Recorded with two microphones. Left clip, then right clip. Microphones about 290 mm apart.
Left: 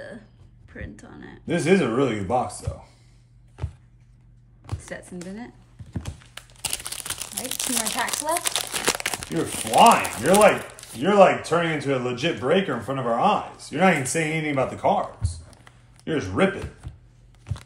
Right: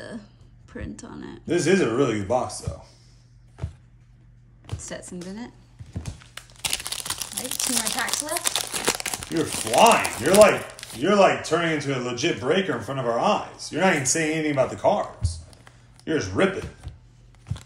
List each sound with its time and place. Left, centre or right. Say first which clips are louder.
0.7 s speech: right 3 dB; centre
1.4 s speech: even; left
4.7 s speech: right 1 dB; centre
6.1 s crumpling: right 1 dB; centre
11.1 s speech: left 3 dB; left
15.5 s a sound: even; centre
16.1 s speech: even; left
16.9 s a sound: even; centre